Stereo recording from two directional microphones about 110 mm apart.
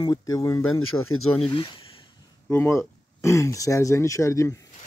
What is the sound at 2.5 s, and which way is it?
Speech, 25° left (ahead or behind).